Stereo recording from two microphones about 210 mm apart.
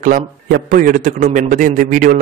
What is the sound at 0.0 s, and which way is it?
Speech, 40° right (ahead or behind).